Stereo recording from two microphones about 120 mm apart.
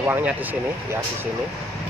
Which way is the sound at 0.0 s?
15° right (ahead or behind).